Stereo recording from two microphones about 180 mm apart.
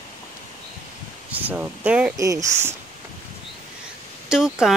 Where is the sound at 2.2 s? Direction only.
15° right (ahead or behind).